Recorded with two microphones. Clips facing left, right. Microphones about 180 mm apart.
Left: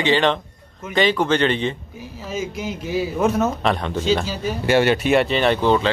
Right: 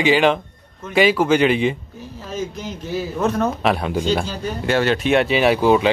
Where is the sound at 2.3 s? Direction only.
10° left (ahead or behind).